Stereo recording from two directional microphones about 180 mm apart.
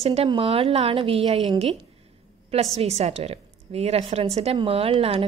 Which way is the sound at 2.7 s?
35° right (ahead or behind).